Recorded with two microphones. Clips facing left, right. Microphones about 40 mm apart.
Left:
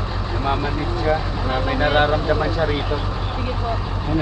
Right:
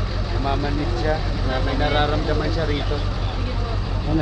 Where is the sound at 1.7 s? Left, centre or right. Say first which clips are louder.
Left 4 dB; left.